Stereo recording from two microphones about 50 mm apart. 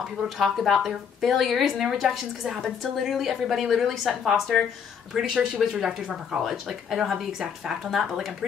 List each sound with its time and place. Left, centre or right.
0.4 s a woman's voice: centre
5.1 s speech: centre